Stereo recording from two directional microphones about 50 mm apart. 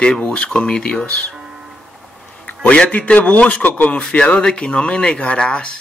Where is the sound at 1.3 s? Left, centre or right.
Centre.